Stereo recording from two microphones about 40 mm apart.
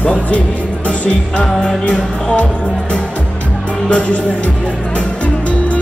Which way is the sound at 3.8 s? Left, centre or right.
Left.